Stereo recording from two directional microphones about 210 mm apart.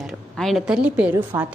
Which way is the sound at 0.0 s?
Centre (ahead or behind).